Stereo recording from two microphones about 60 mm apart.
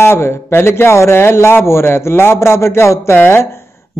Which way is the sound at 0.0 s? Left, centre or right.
Left.